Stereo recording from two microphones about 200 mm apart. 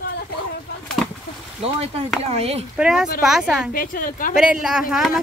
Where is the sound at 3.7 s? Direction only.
45° left (ahead or behind).